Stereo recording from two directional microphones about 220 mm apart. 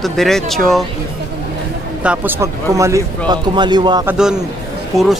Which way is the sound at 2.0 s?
10° right (ahead or behind).